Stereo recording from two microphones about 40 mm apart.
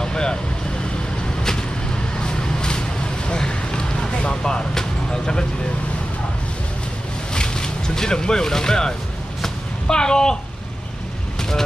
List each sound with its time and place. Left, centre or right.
0.0 s vehicle: centre
2.1 s vehicle: left
3.3 s a sound: left
7.3 s speech: centre
9.4 s a sound: centre
11.3 s vehicle: centre